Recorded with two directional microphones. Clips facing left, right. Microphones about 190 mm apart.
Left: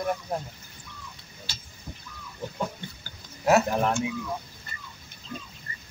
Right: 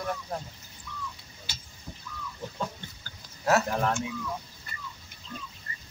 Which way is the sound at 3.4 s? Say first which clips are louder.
Left 3 dB; 15° left (ahead or behind).